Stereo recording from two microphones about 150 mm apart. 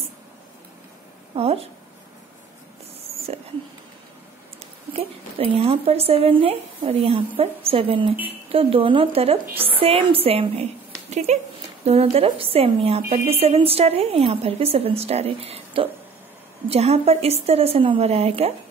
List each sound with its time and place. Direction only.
1.3 s a woman's voice: 40° right (ahead or behind)
4.9 s a woman's voice: 40° right (ahead or behind)
9.5 s a woman's voice: 15° right (ahead or behind)
9.8 s a woman's voice: 40° right (ahead or behind)